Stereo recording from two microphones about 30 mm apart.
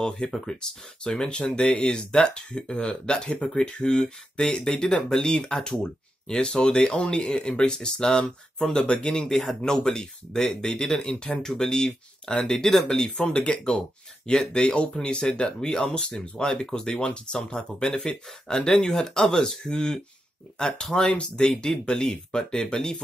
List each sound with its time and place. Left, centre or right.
0.2 s speech: left
9.3 s speech: centre
9.7 s speech: centre
13.3 s speech: left
13.7 s speech: left
18.9 s speech: centre